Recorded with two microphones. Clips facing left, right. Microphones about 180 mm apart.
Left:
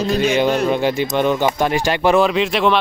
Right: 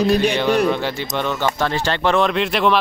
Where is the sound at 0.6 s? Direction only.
15° left (ahead or behind).